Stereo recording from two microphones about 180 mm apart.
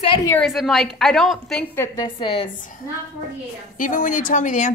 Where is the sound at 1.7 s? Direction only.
15° left (ahead or behind).